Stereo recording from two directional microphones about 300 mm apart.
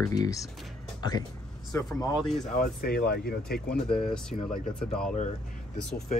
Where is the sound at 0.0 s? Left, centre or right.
Centre.